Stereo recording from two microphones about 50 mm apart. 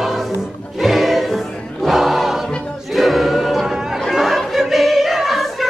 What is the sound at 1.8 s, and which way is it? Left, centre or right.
Choir, centre.